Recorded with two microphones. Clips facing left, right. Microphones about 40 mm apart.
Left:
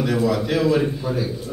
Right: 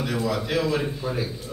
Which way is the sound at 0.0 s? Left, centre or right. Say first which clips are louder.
Left 6 dB; centre.